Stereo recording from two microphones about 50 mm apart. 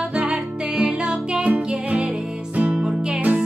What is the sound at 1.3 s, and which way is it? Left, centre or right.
Music, right.